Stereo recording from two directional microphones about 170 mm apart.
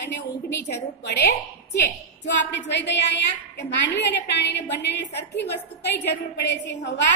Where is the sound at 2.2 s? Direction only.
90° left.